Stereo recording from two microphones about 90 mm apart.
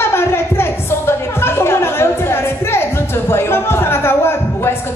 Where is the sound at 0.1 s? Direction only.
25° left (ahead or behind).